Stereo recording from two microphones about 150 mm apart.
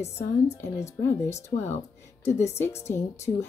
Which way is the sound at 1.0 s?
15° left (ahead or behind).